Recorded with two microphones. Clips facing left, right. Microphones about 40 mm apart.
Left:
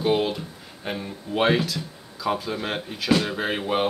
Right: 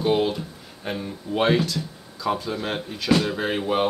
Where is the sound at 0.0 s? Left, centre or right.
Centre.